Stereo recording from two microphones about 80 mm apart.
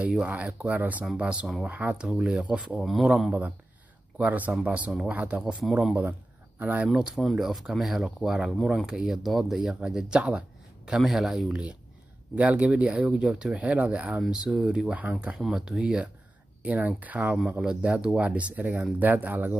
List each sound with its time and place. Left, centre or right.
0.1 s speech: centre
2.9 s speech: centre
4.2 s speech: centre
5.6 s speech: centre
6.6 s speech: centre
6.9 s speech: centre